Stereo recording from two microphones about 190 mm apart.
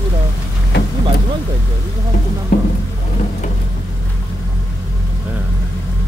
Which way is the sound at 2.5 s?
50° left (ahead or behind).